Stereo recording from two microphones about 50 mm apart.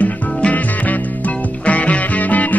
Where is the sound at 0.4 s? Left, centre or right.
Left.